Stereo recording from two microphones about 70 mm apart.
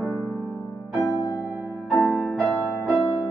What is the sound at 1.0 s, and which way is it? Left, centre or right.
Music, left.